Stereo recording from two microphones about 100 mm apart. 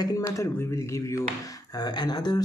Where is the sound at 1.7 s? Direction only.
40° left (ahead or behind).